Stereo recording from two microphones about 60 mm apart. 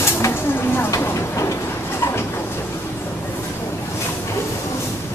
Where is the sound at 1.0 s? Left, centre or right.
Left.